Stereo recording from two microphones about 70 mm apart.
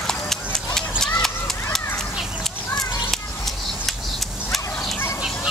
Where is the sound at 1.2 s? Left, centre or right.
Centre.